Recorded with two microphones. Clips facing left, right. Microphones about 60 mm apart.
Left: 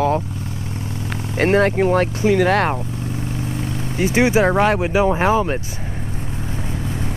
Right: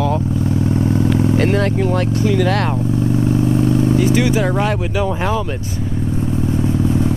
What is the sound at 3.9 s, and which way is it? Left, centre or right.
Speech, left.